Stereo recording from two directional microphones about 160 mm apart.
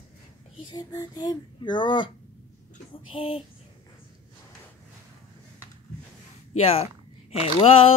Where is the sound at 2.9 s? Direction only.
35° left (ahead or behind).